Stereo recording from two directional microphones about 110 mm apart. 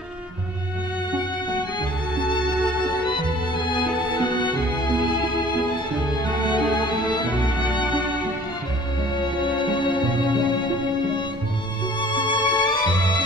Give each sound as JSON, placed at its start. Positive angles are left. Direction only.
{"t": 3.1, "sound": "music", "side_deg": 45}
{"t": 6.2, "sound": "music", "side_deg": 45}
{"t": 9.2, "sound": "music", "side_deg": 45}
{"t": 12.0, "sound": "music", "side_deg": 45}